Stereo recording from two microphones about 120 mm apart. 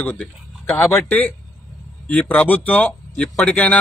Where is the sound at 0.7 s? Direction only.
20° left (ahead or behind).